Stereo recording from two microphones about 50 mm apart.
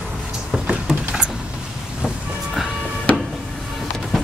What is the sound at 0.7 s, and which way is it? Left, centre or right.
Vehicle, centre.